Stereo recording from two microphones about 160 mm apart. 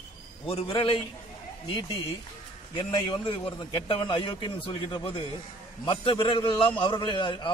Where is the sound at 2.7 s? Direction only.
30° left (ahead or behind).